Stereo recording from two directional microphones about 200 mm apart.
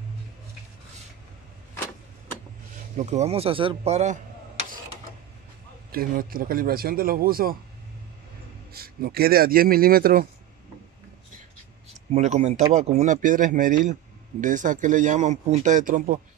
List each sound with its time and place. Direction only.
3.1 s speech: 30° right (ahead or behind)
5.9 s a man's voice: 45° right (ahead or behind)
8.7 s a man's voice: 50° right (ahead or behind)
12.1 s speech: 35° right (ahead or behind)